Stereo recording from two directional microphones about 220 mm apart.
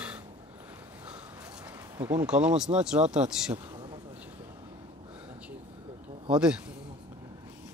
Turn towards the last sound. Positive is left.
turn(degrees=-5)  # may be behind; listen again after turning